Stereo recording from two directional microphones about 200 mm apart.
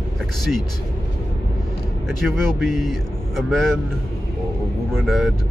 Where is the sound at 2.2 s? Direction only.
Centre (ahead or behind).